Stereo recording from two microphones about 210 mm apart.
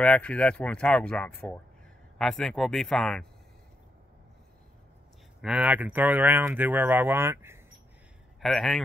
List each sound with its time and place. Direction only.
0.0 s speech: 5° left (ahead or behind)
5.4 s speech: 5° right (ahead or behind)
8.4 s speech: centre (ahead or behind)